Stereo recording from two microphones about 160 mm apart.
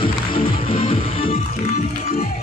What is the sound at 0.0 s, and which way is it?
Music, 35° left (ahead or behind).